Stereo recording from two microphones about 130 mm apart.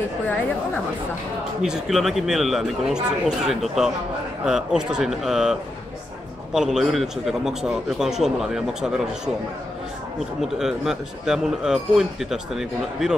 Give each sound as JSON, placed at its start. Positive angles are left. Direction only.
{"t": 1.6, "sound": "a man's voice", "side_deg": 0}
{"t": 10.6, "sound": "a man's voice", "side_deg": -5}